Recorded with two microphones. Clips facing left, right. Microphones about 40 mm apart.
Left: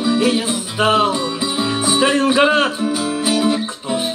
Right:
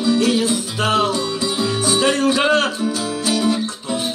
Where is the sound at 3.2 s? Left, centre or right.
Centre.